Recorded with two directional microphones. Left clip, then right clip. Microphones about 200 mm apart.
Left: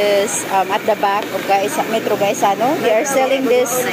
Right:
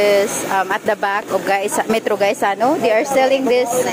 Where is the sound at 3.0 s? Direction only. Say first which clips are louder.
Right 1 dB; 10° right (ahead or behind).